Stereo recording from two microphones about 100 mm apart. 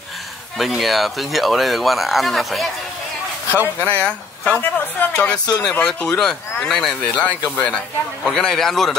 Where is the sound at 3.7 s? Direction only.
15° left (ahead or behind).